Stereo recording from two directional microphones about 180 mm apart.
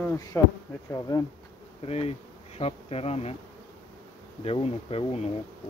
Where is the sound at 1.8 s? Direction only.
35° left (ahead or behind).